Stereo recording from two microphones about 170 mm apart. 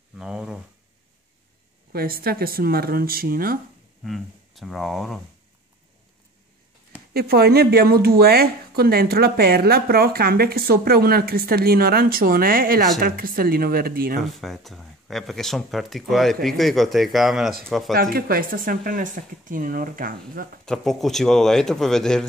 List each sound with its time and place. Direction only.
0.2 s a sound: 5° right (ahead or behind)
1.9 s speech: 65° right (ahead or behind)
4.0 s speech: centre (ahead or behind)
7.2 s speech: 65° right (ahead or behind)
14.4 s speech: centre (ahead or behind)
18.1 s speech: 60° right (ahead or behind)
20.6 s speech: centre (ahead or behind)